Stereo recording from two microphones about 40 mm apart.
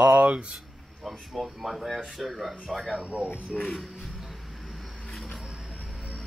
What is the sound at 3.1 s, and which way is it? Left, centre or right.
Speech, right.